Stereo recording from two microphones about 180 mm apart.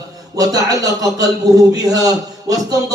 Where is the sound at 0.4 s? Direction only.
20° right (ahead or behind).